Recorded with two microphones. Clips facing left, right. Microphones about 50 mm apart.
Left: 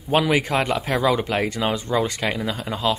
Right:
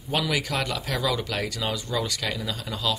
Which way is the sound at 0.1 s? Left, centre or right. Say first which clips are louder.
Left 7 dB; left.